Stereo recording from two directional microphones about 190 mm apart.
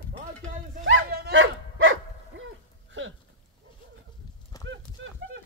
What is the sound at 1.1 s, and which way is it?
Dog, 50° right (ahead or behind).